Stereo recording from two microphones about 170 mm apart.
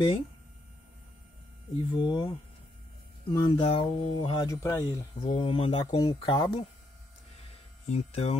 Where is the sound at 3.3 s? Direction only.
25° left (ahead or behind).